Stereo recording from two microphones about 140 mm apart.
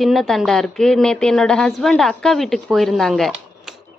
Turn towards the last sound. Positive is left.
turn(degrees=0)  # may be behind; listen again after turning